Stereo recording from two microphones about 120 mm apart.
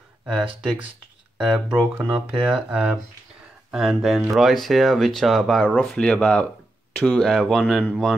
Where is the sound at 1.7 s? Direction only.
15° right (ahead or behind).